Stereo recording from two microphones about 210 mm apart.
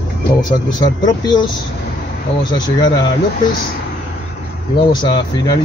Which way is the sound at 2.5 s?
20° left (ahead or behind).